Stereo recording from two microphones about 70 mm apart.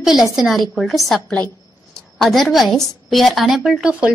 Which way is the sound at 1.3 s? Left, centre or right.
Centre.